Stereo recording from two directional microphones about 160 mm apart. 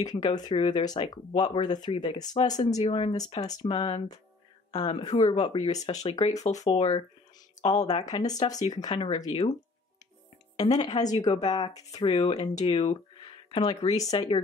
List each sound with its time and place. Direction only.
0.0 s speech: 25° left (ahead or behind)
3.6 s speech: 35° left (ahead or behind)
6.7 s speech: 35° left (ahead or behind)
7.9 s speech: 25° left (ahead or behind)
10.5 s speech: 25° left (ahead or behind)
12.1 s speech: 40° left (ahead or behind)
13.9 s speech: 20° left (ahead or behind)